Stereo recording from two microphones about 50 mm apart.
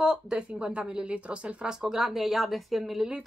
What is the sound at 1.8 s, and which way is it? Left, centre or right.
Speech, centre.